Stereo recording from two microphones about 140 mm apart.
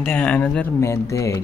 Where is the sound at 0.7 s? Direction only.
20° left (ahead or behind).